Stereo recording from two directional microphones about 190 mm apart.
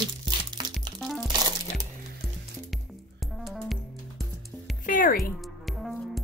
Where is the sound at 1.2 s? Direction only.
20° right (ahead or behind).